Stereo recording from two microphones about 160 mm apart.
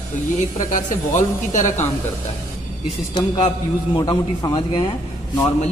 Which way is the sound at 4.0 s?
25° left (ahead or behind).